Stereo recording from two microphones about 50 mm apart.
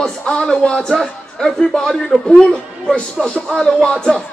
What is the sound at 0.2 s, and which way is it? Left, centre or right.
A man's voice, centre.